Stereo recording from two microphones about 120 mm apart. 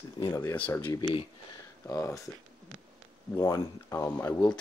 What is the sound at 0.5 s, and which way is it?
Speech, 15° left (ahead or behind).